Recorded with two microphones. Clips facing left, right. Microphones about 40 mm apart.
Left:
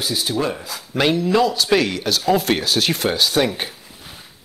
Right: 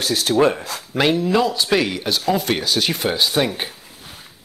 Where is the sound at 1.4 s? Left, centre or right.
Right.